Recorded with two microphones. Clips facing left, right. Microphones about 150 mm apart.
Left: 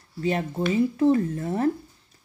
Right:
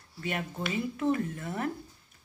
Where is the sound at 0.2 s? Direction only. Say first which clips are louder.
Left 9 dB; 30° left (ahead or behind).